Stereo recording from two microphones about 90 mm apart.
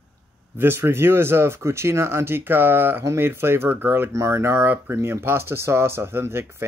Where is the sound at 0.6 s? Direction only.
25° right (ahead or behind).